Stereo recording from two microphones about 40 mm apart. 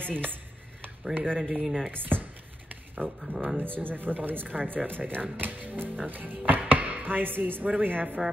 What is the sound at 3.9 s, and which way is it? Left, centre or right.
Speech, right.